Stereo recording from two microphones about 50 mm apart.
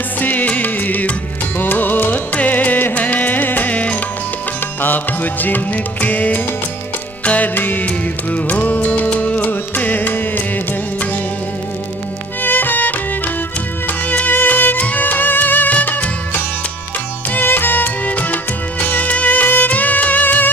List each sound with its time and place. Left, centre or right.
0.2 s music: left
4.8 s music: left
12.4 s music: left
17.3 s music: left